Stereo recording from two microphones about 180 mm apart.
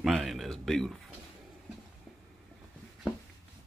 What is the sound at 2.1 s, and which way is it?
Vehicle, 5° left (ahead or behind).